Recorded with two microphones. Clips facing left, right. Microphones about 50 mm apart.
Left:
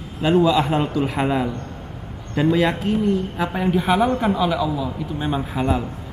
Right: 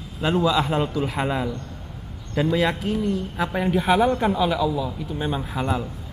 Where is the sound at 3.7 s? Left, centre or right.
Centre.